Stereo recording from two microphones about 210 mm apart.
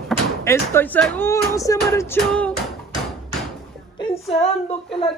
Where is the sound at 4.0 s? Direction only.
30° left (ahead or behind).